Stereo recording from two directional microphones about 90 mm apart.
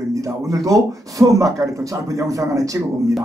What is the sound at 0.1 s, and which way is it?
Speech, 40° right (ahead or behind).